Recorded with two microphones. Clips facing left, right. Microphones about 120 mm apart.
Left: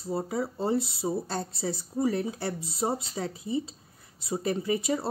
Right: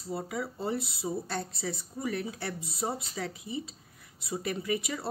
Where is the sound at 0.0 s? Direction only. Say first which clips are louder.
Left 5 dB; 30° left (ahead or behind).